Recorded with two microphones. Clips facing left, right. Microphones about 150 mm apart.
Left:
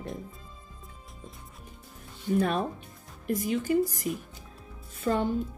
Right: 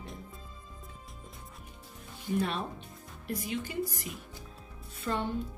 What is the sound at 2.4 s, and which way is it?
A woman's voice, 45° left (ahead or behind).